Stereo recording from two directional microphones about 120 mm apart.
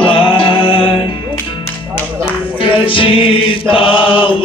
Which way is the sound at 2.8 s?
45° left (ahead or behind).